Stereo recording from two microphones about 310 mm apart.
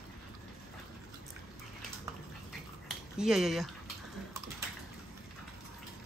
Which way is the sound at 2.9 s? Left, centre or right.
Centre.